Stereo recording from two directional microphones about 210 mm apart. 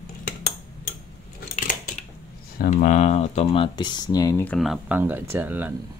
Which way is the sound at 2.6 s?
35° left (ahead or behind).